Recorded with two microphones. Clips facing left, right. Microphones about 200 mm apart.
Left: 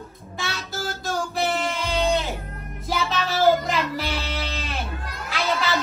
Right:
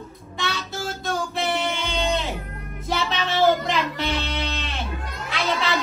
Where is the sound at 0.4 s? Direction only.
Centre (ahead or behind).